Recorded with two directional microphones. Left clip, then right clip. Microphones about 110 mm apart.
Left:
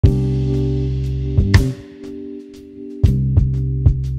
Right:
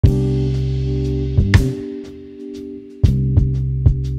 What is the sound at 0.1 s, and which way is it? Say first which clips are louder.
Music: right 2 dB; 15° left (ahead or behind).